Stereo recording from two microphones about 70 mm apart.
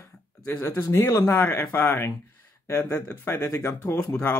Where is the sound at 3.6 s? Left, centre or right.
Left.